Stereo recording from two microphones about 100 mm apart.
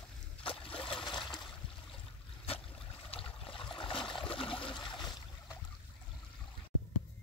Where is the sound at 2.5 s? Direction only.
75° left (ahead or behind).